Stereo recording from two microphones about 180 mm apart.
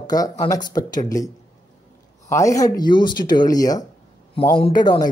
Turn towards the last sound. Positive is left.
turn(degrees=25)  # may be behind; listen again after turning